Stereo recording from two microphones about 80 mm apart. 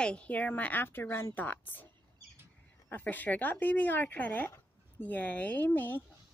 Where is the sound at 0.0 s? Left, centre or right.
Centre.